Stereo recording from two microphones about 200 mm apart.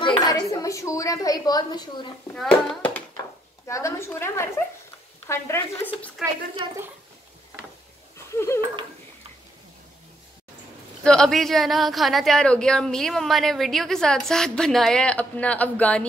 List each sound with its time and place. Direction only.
0.0 s a woman's voice: 20° left (ahead or behind)
2.3 s a woman's voice: 5° left (ahead or behind)
6.2 s a woman's voice: centre (ahead or behind)
6.6 s a woman's voice: 25° right (ahead or behind)
8.3 s speech: 15° left (ahead or behind)
11.1 s a woman's voice: centre (ahead or behind)